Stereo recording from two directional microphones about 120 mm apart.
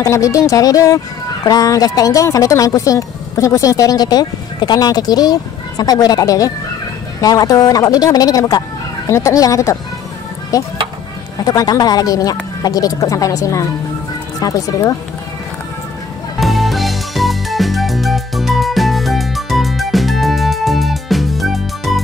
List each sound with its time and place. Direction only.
0.0 s speech: 25° left (ahead or behind)
16.3 s music: centre (ahead or behind)